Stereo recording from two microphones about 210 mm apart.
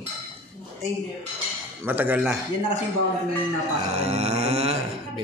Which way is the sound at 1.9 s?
10° right (ahead or behind).